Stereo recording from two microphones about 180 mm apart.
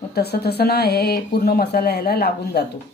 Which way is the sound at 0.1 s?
65° left (ahead or behind).